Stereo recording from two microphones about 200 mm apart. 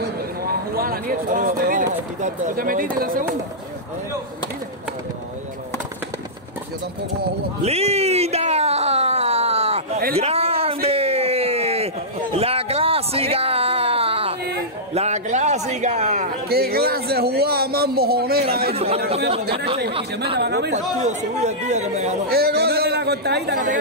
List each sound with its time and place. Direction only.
0.7 s speech: 45° right (ahead or behind)
7.6 s a sound: 30° right (ahead or behind)
15.0 s speech: 35° right (ahead or behind)
16.4 s speech: 50° right (ahead or behind)
20.3 s speech: 55° right (ahead or behind)
20.7 s speech: 35° right (ahead or behind)
22.3 s a man's voice: 50° right (ahead or behind)